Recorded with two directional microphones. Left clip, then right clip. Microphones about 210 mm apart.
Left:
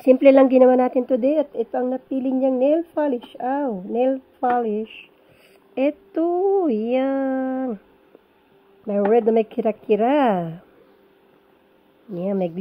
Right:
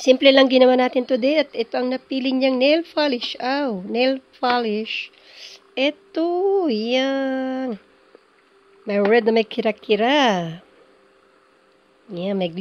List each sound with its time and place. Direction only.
0.0 s a woman's voice: 5° right (ahead or behind)
5.8 s a woman's voice: 5° right (ahead or behind)
9.1 s a woman's voice: 15° right (ahead or behind)
12.1 s a woman's voice: 10° right (ahead or behind)